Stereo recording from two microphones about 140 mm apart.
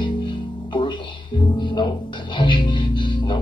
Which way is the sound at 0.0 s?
35° left (ahead or behind).